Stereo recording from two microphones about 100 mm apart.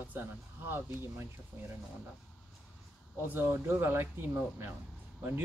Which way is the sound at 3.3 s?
20° right (ahead or behind).